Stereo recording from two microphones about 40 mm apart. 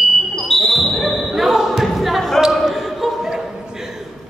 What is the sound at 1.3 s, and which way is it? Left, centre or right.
Basketball bounce, centre.